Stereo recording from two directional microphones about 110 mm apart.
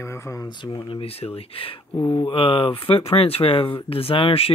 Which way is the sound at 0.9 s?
65° left (ahead or behind).